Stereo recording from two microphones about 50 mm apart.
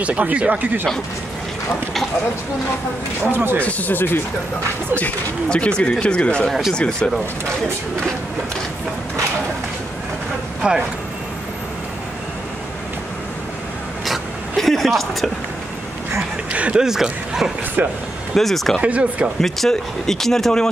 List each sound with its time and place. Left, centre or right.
0.0 s speech: right
3.3 s speech: right
3.6 s speech: left
5.5 s speech: centre
10.6 s speech: centre
14.0 s a sound: centre
16.5 s speech: right
16.8 s speech: centre
17.8 s speech: right
18.3 s speech: centre
18.8 s speech: right
19.7 s speech: centre